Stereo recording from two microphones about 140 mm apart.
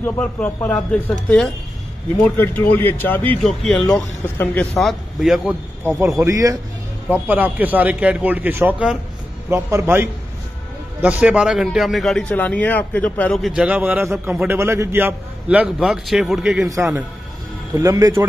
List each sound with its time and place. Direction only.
0.0 s a man's voice: 15° left (ahead or behind); by 5.6 s centre (ahead or behind)
5.9 s speech: 20° right (ahead or behind)
7.1 s a man's voice: 15° right (ahead or behind); by 13.4 s 10° left (ahead or behind)
13.6 s a man's voice: 10° right (ahead or behind)
14.3 s a man's voice: 5° right (ahead or behind)
14.6 s a man's voice: 20° right (ahead or behind); by 16.6 s 5° right (ahead or behind)
17.7 s speech: 25° right (ahead or behind)